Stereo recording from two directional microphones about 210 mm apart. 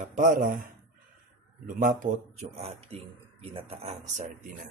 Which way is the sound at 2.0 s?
35° right (ahead or behind).